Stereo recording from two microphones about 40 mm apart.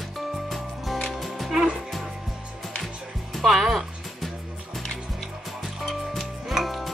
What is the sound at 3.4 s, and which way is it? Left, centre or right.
Music, centre.